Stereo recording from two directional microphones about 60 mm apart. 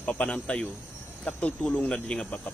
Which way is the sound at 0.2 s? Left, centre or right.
Centre.